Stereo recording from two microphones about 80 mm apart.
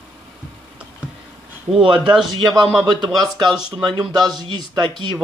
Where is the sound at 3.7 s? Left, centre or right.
Right.